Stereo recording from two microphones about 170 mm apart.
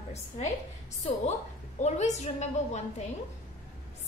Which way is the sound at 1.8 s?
40° left (ahead or behind).